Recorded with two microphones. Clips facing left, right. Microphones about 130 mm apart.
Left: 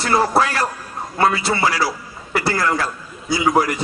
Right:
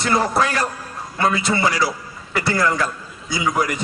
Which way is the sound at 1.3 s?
20° right (ahead or behind).